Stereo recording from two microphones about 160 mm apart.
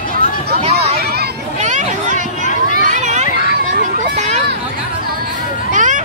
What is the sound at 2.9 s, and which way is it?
Children playing, 50° right (ahead or behind).